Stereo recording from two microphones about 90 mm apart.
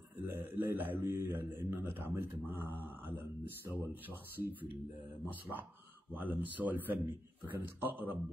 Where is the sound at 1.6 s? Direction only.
25° right (ahead or behind).